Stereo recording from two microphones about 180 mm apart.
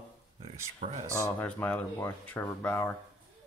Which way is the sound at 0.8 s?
40° right (ahead or behind).